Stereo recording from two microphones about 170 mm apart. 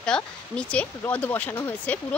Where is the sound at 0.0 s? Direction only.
5° left (ahead or behind).